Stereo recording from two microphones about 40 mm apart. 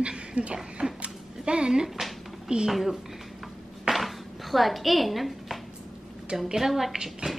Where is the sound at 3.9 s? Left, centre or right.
Centre.